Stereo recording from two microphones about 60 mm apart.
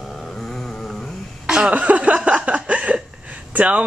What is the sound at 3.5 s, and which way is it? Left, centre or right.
Speech, right.